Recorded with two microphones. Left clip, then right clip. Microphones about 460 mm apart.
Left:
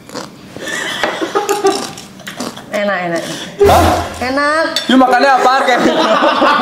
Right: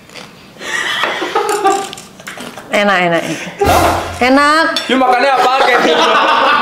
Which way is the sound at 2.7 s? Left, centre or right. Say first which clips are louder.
Right 5 dB; right.